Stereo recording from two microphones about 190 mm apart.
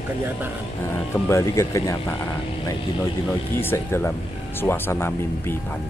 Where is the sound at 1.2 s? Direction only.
15° left (ahead or behind).